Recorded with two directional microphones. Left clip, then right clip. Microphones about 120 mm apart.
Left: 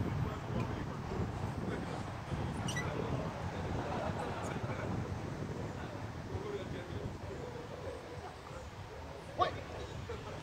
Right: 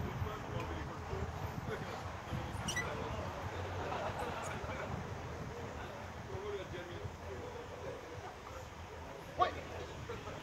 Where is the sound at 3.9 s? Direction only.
45° right (ahead or behind).